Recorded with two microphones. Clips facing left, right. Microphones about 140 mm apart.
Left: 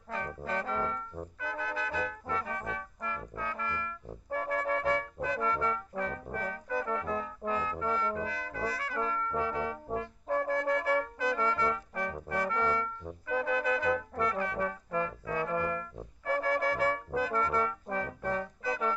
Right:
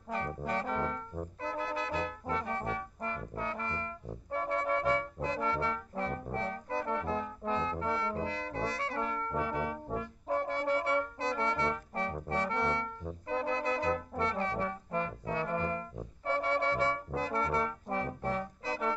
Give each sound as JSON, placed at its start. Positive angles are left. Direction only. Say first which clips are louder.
{"t": 0.1, "sound": "trombone", "louder": "right 1 dB", "side_deg": -30}
{"t": 1.4, "sound": "music", "louder": "right 1 dB", "side_deg": -30}
{"t": 10.2, "sound": "brass instrument", "louder": "left 2 dB", "side_deg": -30}
{"t": 13.3, "sound": "music", "louder": "left 2 dB", "side_deg": -30}
{"t": 14.1, "sound": "trombone", "louder": "left 1 dB", "side_deg": -30}